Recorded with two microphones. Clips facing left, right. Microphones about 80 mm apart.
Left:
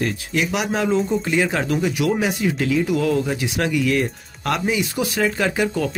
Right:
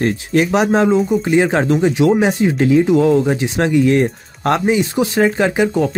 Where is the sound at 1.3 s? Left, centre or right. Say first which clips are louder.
Right 8 dB; right.